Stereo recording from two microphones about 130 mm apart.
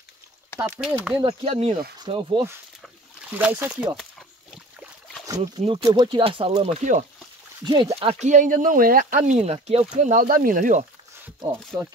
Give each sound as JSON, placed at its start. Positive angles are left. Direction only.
{"t": 0.7, "sound": "speech", "side_deg": -10}
{"t": 1.2, "sound": "speech", "side_deg": -45}
{"t": 2.0, "sound": "speech", "side_deg": -35}
{"t": 3.3, "sound": "speech", "side_deg": -10}
{"t": 5.2, "sound": "a sound", "side_deg": -25}
{"t": 5.6, "sound": "speech", "side_deg": -50}
{"t": 5.9, "sound": "speech", "side_deg": -40}
{"t": 6.8, "sound": "speech", "side_deg": -65}
{"t": 7.6, "sound": "speech", "side_deg": -40}
{"t": 7.9, "sound": "speech", "side_deg": -50}
{"t": 8.3, "sound": "speech", "side_deg": -80}